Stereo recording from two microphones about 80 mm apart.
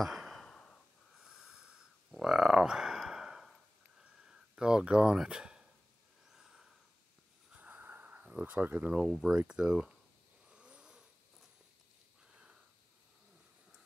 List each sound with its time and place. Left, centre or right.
0.0 s sigh: centre
1.1 s snort: centre
2.0 s a sound: centre
7.5 s sniff: centre
9.3 s speech: centre
10.5 s snoring: centre
12.3 s a sound: centre